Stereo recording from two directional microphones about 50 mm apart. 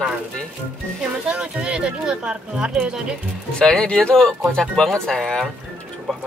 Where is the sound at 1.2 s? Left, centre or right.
Right.